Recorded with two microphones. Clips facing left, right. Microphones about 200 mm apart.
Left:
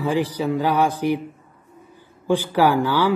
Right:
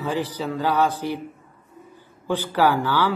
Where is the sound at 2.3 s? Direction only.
15° left (ahead or behind).